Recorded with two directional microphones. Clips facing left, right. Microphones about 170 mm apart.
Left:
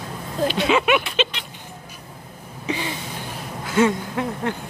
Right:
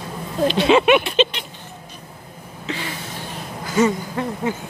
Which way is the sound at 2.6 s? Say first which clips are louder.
Left 2 dB; 15° left (ahead or behind).